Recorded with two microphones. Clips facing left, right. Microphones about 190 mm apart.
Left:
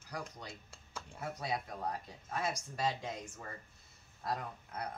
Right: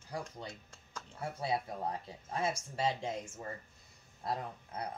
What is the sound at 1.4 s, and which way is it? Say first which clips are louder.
Speech: right 4 dB; 25° right (ahead or behind).